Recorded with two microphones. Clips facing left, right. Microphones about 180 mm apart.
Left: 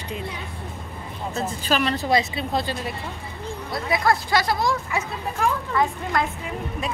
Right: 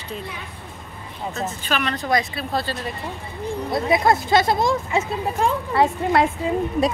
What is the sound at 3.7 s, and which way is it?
Speech, 25° right (ahead or behind).